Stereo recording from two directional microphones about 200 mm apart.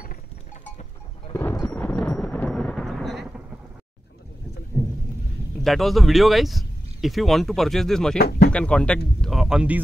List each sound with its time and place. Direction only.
1.3 s thunder: 10° left (ahead or behind)
5.6 s speech: centre (ahead or behind)
8.2 s speech: 50° left (ahead or behind)
8.5 s speech: 5° left (ahead or behind)